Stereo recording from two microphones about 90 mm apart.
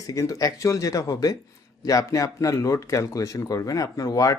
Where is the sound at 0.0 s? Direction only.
40° left (ahead or behind).